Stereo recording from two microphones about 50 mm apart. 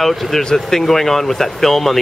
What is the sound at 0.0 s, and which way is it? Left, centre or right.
Speech, centre.